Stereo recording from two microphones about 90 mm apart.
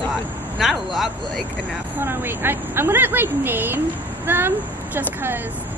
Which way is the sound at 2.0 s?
25° right (ahead or behind).